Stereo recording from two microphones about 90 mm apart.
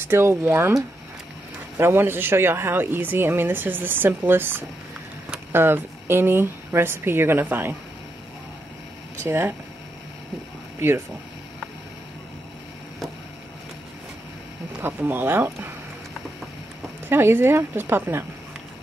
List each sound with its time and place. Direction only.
0.0 s speech: 25° right (ahead or behind)
1.8 s speech: 25° right (ahead or behind)
9.2 s speech: 25° right (ahead or behind)
14.8 s speech: 20° right (ahead or behind)
17.1 s speech: 25° right (ahead or behind)